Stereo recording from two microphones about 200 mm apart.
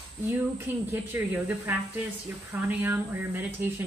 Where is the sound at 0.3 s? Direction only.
15° right (ahead or behind).